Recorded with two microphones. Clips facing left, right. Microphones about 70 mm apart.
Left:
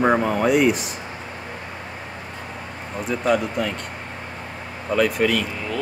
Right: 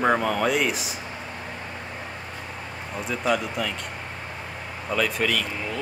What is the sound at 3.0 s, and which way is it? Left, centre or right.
Speech, centre.